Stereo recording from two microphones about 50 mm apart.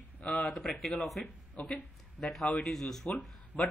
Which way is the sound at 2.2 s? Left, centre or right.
Centre.